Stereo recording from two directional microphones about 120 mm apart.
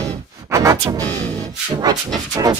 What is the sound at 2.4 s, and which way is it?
Speech, 35° right (ahead or behind).